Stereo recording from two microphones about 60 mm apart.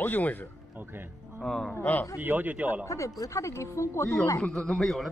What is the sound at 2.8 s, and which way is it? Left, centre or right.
Speech, left.